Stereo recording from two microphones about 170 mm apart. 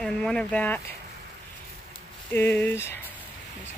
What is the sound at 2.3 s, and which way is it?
Speech, 10° left (ahead or behind).